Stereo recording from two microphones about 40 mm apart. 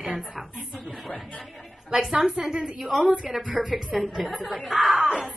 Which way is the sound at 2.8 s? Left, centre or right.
Centre.